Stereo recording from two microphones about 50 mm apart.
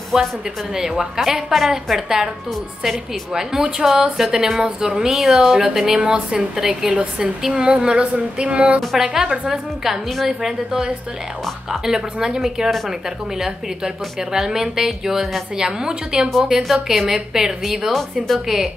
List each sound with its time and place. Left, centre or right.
0.1 s a woman's voice: centre
5.9 s a woman's voice: right
6.6 s a woman's voice: centre; by 8.8 s right
8.9 s a woman's voice: centre
16.6 s a woman's voice: centre